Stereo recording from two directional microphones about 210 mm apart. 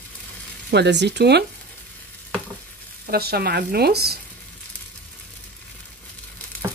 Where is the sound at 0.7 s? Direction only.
55° right (ahead or behind).